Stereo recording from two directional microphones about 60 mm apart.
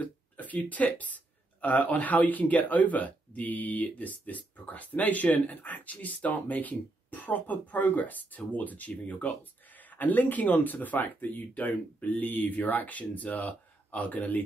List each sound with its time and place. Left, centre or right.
0.0 s speech: left